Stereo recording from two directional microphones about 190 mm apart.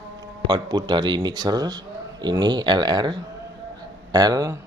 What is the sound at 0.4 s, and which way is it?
Speech, 20° right (ahead or behind).